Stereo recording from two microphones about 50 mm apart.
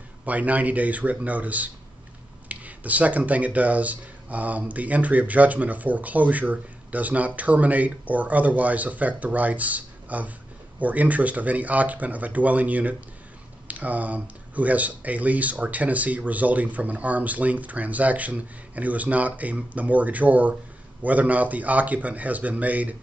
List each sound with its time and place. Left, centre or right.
0.2 s speech: right